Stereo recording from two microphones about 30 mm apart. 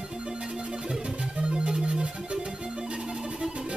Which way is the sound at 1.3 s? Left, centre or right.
Right.